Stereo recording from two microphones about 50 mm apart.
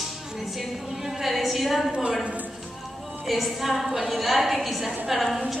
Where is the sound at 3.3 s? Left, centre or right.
Centre.